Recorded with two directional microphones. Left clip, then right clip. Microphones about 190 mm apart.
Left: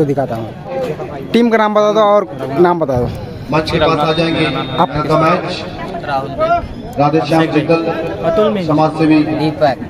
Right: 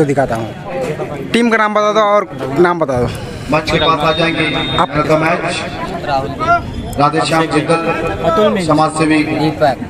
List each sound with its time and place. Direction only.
0.0 s a man's voice: centre (ahead or behind)
3.5 s a man's voice: 25° left (ahead or behind)
7.0 s a man's voice: 5° right (ahead or behind)